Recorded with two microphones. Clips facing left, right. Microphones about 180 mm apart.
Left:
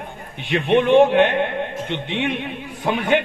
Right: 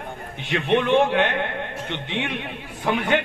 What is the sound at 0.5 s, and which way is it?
Speech, 20° left (ahead or behind).